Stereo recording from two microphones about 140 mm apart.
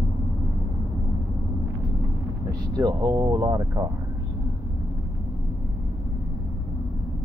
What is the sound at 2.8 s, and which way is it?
Speech, 30° right (ahead or behind).